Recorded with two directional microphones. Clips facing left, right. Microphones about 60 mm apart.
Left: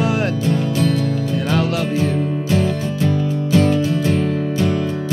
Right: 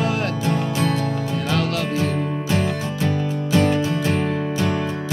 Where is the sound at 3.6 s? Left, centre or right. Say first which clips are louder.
Left 3 dB; right.